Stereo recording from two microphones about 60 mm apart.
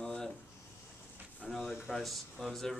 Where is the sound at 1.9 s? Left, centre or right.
Centre.